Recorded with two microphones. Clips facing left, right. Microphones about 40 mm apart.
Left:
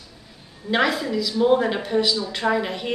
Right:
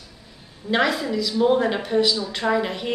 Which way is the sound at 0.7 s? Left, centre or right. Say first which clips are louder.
Even; centre.